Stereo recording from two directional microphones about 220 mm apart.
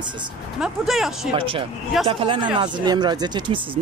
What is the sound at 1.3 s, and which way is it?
Speech, 25° right (ahead or behind).